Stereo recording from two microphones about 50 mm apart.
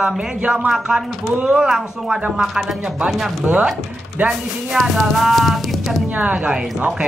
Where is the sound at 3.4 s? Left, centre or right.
Right.